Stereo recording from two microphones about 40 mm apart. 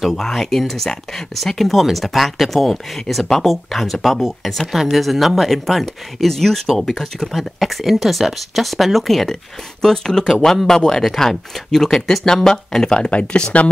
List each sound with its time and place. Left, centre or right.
0.0 s speech: centre
13.1 s speech: left